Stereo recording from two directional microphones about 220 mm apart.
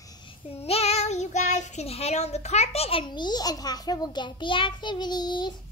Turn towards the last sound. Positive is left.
turn(degrees=20)  # may be behind; listen again after turning